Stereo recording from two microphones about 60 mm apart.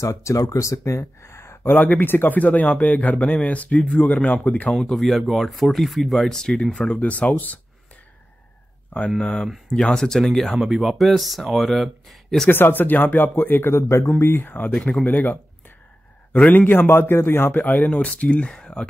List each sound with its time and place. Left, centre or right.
0.0 s speech: left
1.6 s speech: left
4.9 s speech: centre; by 7.6 s left
9.2 s speech: centre
12.4 s a man's voice: left
16.3 s a man's voice: left